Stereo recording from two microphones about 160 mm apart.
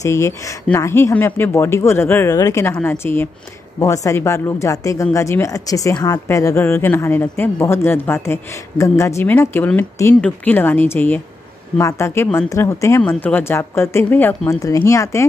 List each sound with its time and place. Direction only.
0.0 s speech: 15° left (ahead or behind)